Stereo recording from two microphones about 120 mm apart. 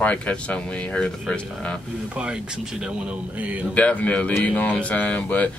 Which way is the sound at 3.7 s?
10° left (ahead or behind).